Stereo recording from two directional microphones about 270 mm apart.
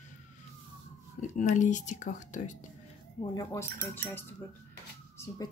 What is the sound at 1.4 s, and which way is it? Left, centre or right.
Speech, left.